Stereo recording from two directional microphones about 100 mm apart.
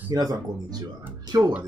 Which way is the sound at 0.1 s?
40° right (ahead or behind).